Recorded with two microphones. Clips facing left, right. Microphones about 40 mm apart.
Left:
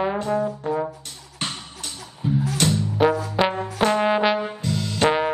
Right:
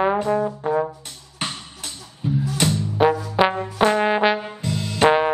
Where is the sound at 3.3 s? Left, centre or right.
Centre.